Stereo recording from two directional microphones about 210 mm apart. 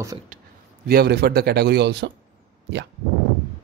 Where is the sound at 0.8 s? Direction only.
50° right (ahead or behind).